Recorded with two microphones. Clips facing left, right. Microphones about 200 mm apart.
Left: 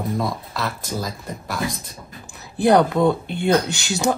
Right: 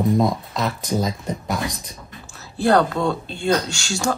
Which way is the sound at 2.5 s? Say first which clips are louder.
Left 2 dB; 20° left (ahead or behind).